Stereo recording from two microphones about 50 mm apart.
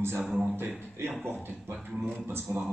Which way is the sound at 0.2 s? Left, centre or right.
Centre.